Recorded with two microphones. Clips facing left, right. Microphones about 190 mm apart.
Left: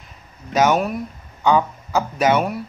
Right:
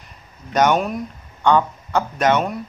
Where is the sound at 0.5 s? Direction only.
5° left (ahead or behind).